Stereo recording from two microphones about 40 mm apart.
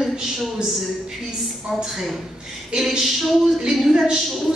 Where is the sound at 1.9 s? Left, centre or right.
Centre.